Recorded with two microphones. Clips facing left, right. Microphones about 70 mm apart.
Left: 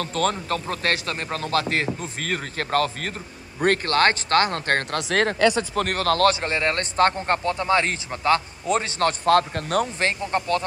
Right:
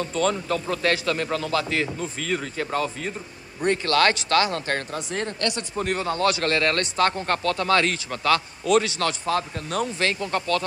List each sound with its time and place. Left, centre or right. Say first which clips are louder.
0.0 s a man's voice: even; left
0.3 s a man's voice: right 1 dB; left
3.8 s speech: even; left
4.9 s speech: left 6 dB; left
5.8 s a man's voice: left 3 dB; left
6.4 s a man's voice: right 1 dB; left
9.2 s speech: left 7 dB; left
9.9 s a man's voice: left 1 dB; left